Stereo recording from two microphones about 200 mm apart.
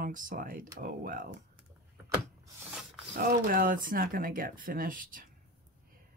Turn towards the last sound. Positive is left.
turn(degrees=-40)  # may be behind; listen again after turning